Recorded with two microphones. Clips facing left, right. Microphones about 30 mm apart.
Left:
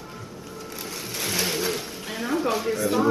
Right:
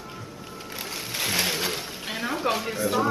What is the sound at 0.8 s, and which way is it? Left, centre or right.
Sewing machine, right.